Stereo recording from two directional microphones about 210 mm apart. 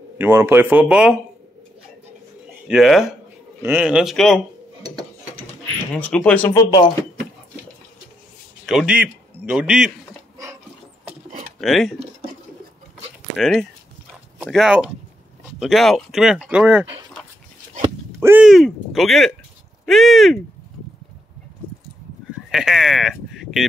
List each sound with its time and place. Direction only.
0.2 s speech: 10° right (ahead or behind)
2.7 s speech: centre (ahead or behind)
5.9 s speech: 5° left (ahead or behind)
6.5 s speech: 20° left (ahead or behind)
8.6 s speech: 5° right (ahead or behind)
10.3 s a sound: 15° right (ahead or behind)
11.6 s speech: centre (ahead or behind)
13.4 s speech: centre (ahead or behind)
18.2 s speech: 5° right (ahead or behind)
22.5 s sheep: centre (ahead or behind)